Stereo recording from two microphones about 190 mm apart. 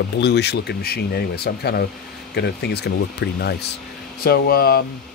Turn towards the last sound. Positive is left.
turn(degrees=55)  # may be behind; listen again after turning